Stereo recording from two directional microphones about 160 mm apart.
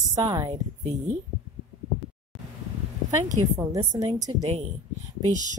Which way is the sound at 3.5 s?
25° right (ahead or behind).